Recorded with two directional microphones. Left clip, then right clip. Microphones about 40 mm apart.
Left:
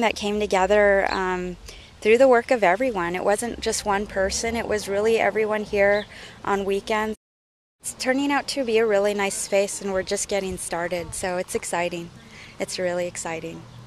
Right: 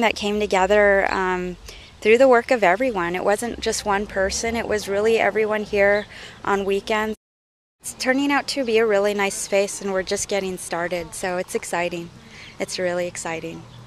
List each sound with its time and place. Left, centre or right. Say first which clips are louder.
0.0 s a woman's voice: right 2 dB; centre